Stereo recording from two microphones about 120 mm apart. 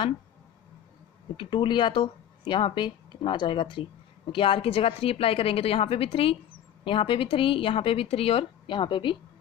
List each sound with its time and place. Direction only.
1.3 s speech: 45° left (ahead or behind)